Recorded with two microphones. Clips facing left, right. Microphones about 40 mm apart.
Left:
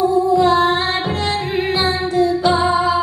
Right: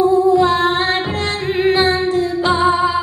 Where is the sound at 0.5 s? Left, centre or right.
Right.